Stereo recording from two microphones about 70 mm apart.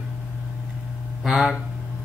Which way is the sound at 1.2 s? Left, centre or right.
Centre.